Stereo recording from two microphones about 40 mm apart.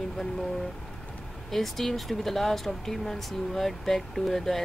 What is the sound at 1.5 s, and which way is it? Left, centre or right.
Speech, centre.